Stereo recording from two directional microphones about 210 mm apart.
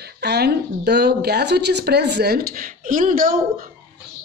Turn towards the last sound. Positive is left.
turn(degrees=-40)  # may be behind; listen again after turning